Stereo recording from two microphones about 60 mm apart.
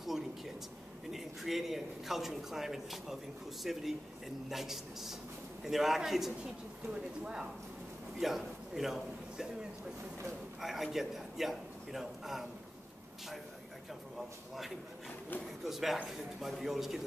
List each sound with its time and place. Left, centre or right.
1.1 s speech: centre
8.2 s a man's voice: centre
15.6 s speech: centre